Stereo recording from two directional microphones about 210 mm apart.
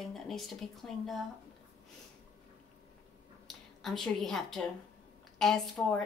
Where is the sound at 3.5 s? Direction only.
Centre (ahead or behind).